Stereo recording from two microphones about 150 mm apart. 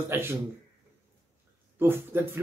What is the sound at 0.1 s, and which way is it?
Speech, 15° right (ahead or behind).